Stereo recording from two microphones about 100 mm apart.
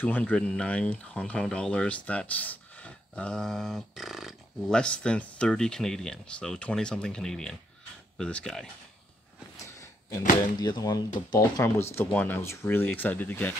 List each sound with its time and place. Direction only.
0.0 s speech: 15° left (ahead or behind)
9.8 s speech: 30° left (ahead or behind)